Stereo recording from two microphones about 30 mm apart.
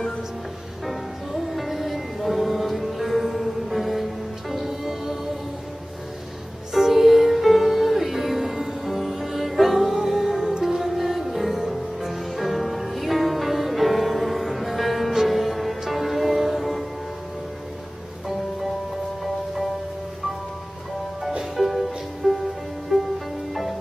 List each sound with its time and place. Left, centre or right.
0.8 s music: centre
6.7 s music: centre
21.5 s music: centre
22.9 s music: right